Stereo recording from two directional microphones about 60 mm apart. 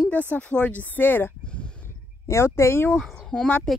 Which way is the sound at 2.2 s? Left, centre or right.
Left.